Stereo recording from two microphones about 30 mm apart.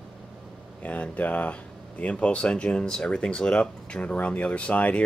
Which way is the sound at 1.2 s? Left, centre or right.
Left.